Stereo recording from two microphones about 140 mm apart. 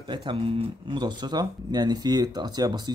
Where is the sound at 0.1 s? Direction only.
35° right (ahead or behind).